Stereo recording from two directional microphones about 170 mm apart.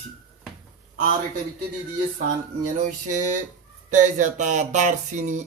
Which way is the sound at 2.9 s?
50° right (ahead or behind).